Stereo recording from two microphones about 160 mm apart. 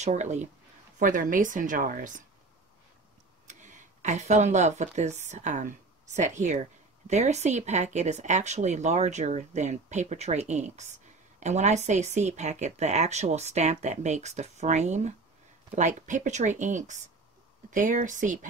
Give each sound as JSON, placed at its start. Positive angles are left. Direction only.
{"t": 0.0, "sound": "speech", "side_deg": -45}
{"t": 3.4, "sound": "speech", "side_deg": -50}